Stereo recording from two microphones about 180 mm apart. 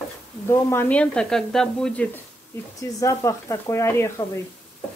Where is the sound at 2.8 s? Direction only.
20° left (ahead or behind).